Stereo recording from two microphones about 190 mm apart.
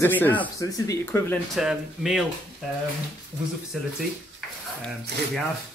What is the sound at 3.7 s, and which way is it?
Speech, centre (ahead or behind).